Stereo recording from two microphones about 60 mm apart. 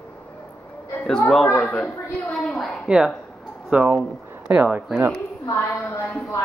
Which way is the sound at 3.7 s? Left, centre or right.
Right.